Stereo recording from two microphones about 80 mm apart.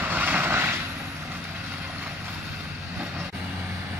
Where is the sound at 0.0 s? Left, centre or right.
Right.